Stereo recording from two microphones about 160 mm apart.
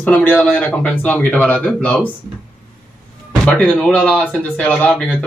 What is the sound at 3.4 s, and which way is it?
Speech, 5° left (ahead or behind).